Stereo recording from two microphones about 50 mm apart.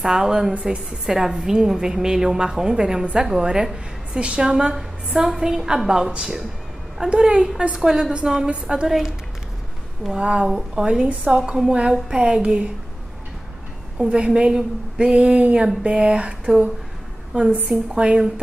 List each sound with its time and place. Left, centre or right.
0.0 s a woman's voice: centre
1.0 s a woman's voice: centre
7.7 s a woman's voice: centre
8.8 s speech: centre
10.1 s a woman's voice: right
10.5 s a woman's voice: centre
10.9 s a woman's voice: right
11.3 s a woman's voice: centre
13.9 s a woman's voice: right
17.4 s a woman's voice: right
17.6 s a woman's voice: centre